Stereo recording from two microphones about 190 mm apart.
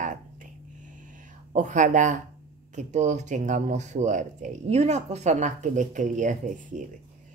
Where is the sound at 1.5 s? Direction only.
40° right (ahead or behind).